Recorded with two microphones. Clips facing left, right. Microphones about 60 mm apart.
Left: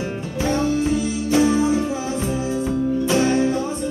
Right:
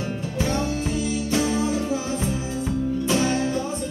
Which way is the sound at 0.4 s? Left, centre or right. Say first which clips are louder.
Left 5 dB; left.